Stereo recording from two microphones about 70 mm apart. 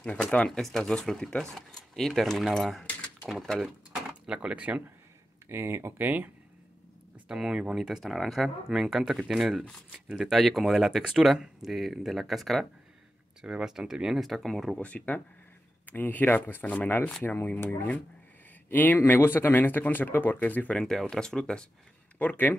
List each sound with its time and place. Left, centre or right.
0.0 s speech: centre
0.5 s speech: centre
3.6 s speech: centre
5.5 s speech: right
6.0 s speech: right
7.2 s speech: centre
13.4 s speech: centre
14.8 s speech: centre
20.8 s speech: centre
22.2 s speech: left